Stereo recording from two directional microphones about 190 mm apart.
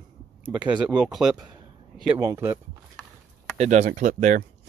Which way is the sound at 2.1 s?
15° right (ahead or behind).